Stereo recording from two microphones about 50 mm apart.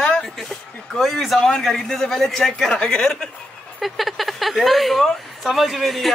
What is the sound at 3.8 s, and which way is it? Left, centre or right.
A woman's voice, centre.